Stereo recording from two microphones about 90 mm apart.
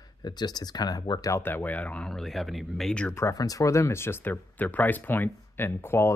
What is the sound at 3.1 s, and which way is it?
Speech, 40° left (ahead or behind).